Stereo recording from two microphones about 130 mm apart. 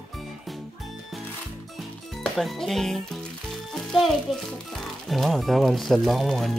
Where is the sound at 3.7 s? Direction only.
Centre (ahead or behind).